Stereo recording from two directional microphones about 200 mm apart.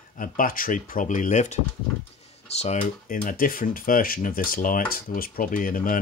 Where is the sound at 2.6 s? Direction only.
35° left (ahead or behind).